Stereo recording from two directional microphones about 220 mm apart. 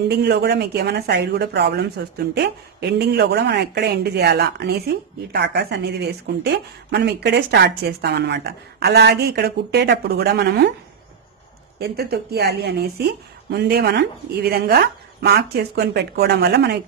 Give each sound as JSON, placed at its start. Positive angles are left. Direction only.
{"t": 0.1, "sound": "speech", "side_deg": -45}
{"t": 11.8, "sound": "speech", "side_deg": -45}